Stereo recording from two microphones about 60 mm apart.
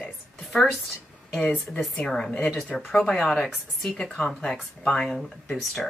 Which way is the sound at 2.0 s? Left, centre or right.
Centre.